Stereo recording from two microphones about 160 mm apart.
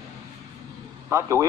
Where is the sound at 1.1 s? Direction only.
20° right (ahead or behind).